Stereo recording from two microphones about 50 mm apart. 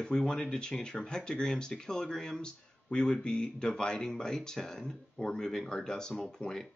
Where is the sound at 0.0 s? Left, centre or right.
Centre.